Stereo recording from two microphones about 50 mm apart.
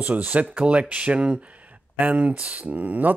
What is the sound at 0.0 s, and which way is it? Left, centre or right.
Speech, right.